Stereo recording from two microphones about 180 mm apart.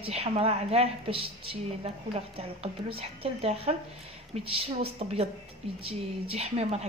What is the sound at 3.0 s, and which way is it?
A woman's voice, 30° right (ahead or behind).